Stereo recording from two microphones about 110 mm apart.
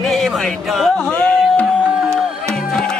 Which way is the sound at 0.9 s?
15° left (ahead or behind).